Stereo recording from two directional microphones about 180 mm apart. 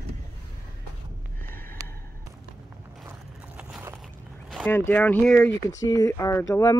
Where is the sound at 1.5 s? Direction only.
10° left (ahead or behind).